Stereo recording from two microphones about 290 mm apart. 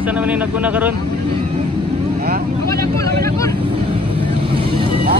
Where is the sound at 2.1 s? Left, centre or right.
Right.